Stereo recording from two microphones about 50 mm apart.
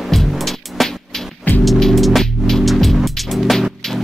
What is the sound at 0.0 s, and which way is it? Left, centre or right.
Music, centre.